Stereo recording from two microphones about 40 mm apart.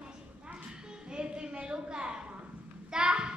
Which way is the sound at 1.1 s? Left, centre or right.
Right.